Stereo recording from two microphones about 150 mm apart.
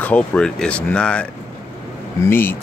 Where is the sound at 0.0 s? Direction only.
10° left (ahead or behind).